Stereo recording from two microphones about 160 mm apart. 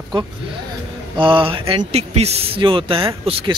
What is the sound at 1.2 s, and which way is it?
Speech, 30° right (ahead or behind).